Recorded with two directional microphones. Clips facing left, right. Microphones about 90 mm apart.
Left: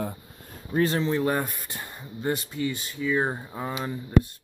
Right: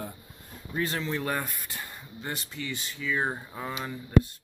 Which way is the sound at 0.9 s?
25° left (ahead or behind).